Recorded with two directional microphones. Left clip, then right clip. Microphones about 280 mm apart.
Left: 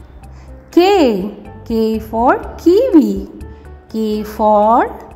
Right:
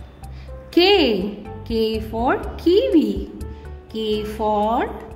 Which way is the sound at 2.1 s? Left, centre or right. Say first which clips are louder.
Left 10 dB; centre.